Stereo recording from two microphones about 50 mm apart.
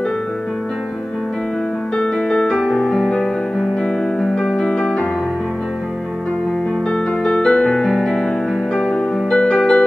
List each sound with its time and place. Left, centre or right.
2.0 s music: centre
2.5 s music: centre
7.3 s music: centre